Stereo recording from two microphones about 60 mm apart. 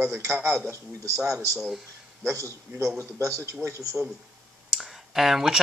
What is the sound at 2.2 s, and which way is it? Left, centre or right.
A man's voice, right.